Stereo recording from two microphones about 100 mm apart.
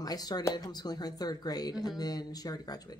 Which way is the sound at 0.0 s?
40° left (ahead or behind).